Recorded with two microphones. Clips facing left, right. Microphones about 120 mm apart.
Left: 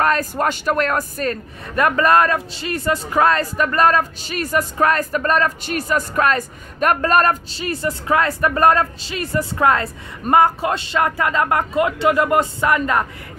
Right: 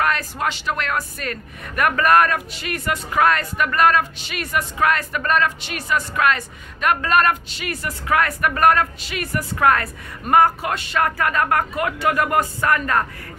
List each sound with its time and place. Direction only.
0.0 s speech: 40° left (ahead or behind); by 13.0 s 20° left (ahead or behind)